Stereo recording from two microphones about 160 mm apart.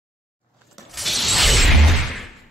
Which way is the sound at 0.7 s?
Centre (ahead or behind).